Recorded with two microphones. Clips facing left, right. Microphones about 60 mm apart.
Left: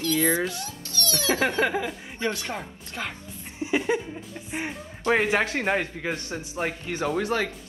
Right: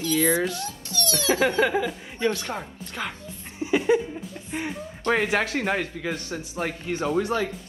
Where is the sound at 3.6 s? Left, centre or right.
Centre.